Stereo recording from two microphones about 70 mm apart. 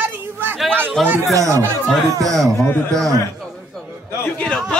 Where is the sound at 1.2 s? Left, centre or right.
Right.